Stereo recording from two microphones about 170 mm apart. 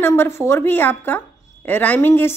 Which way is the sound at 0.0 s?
15° left (ahead or behind).